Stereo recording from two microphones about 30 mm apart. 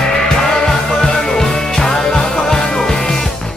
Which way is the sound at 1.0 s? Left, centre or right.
Left.